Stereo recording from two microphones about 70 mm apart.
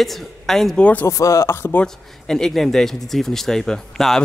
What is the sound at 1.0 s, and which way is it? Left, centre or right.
Speech, left.